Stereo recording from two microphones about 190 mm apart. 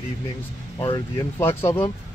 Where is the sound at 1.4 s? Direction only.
10° left (ahead or behind).